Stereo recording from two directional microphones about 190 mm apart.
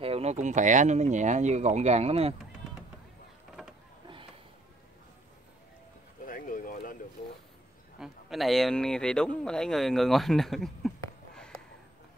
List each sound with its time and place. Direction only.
0.0 s speech: 30° right (ahead or behind)
6.2 s a sound: 45° left (ahead or behind)
8.0 s speech: centre (ahead or behind)